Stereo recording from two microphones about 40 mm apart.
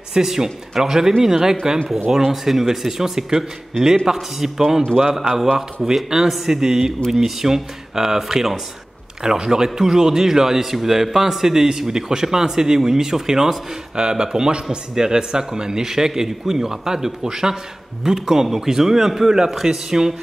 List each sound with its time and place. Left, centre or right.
0.1 s a man's voice: centre